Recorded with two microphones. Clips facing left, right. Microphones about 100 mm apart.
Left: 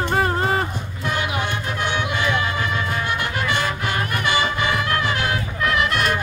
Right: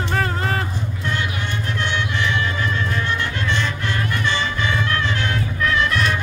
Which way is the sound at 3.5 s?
65° left (ahead or behind).